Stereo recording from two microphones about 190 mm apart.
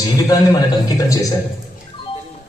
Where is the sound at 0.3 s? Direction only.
20° left (ahead or behind).